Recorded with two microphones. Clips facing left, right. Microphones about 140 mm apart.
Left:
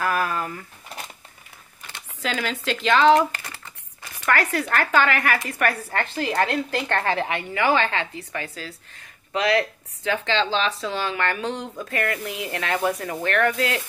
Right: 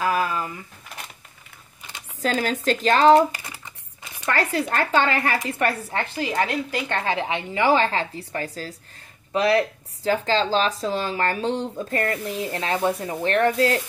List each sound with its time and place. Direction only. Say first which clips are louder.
0.0 s a sound: right 1 dB; 20° right (ahead or behind)
2.2 s speech: right 4 dB; 40° right (ahead or behind)
3.3 s typing: right 1 dB; 15° right (ahead or behind)
4.3 s a woman's voice: left 1 dB; 25° right (ahead or behind)
10.0 s speech: right 2 dB; 35° right (ahead or behind)